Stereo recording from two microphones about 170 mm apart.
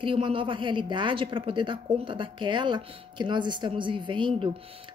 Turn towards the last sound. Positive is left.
turn(degrees=-30)  # may be behind; listen again after turning